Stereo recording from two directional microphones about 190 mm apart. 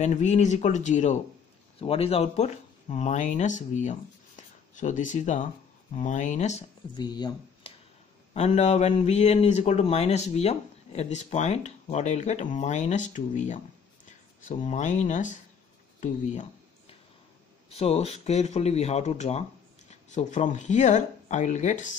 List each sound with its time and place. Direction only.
0.0 s speech: 40° left (ahead or behind)
7.0 s speech: 20° left (ahead or behind)
8.3 s speech: 35° left (ahead or behind)
17.6 s speech: 35° left (ahead or behind)